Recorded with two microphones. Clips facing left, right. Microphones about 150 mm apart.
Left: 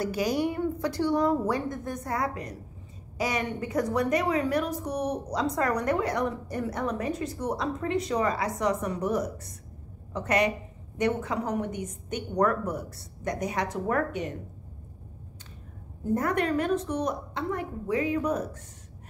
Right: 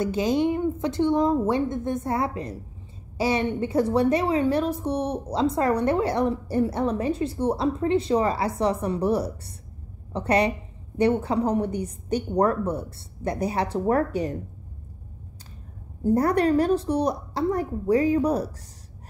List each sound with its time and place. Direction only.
0.0 s a woman's voice: 25° right (ahead or behind)
16.0 s a woman's voice: 35° right (ahead or behind)